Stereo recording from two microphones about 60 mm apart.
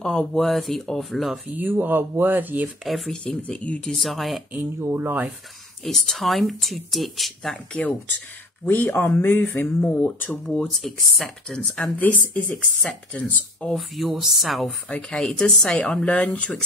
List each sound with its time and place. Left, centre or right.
0.0 s speech: centre
0.4 s speech: centre
1.6 s speech: right
2.8 s speech: centre
3.1 s speech: centre
4.0 s speech: centre
4.7 s speech: right
5.9 s speech: centre
8.6 s speech: left
10.8 s speech: centre
12.0 s speech: left
13.7 s speech: centre
14.9 s speech: centre